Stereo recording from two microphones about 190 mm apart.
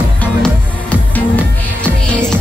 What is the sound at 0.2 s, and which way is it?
Music, 5° left (ahead or behind).